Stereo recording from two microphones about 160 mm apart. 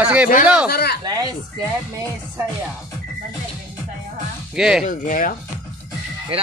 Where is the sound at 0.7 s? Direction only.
80° left.